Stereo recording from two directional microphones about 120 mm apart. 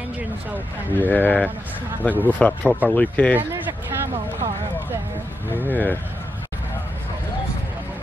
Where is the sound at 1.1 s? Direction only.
10° left (ahead or behind).